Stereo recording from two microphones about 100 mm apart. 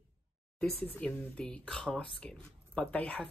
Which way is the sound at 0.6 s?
20° left (ahead or behind).